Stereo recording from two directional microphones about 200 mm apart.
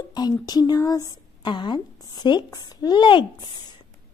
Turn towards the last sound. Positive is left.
turn(degrees=25)  # may be behind; listen again after turning